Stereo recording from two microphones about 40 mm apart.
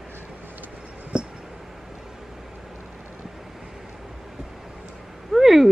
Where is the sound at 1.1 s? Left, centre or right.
Right.